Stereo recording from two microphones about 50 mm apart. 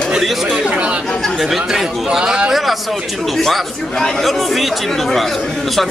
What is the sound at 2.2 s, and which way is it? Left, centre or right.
Speech, right.